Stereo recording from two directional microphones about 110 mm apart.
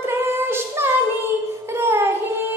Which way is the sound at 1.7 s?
20° right (ahead or behind).